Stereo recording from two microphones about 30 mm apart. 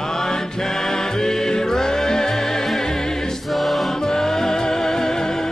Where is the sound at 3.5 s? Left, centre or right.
Centre.